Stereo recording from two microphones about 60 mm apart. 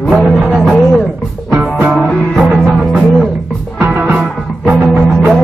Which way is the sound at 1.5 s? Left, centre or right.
Right.